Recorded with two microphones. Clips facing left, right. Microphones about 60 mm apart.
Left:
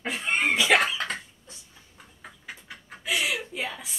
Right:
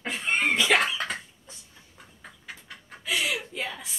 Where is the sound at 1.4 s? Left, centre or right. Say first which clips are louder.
Even; centre.